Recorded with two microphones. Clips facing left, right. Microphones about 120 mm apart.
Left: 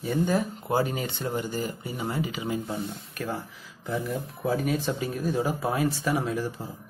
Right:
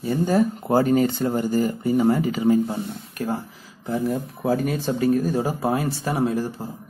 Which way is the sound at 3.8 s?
40° right (ahead or behind).